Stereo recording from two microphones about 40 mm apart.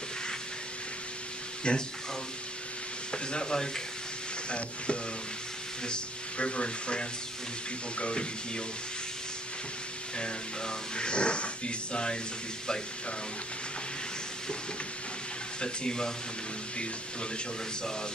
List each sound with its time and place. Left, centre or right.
1.6 s speech: left
3.1 s speech: left
10.1 s speech: left
15.6 s speech: centre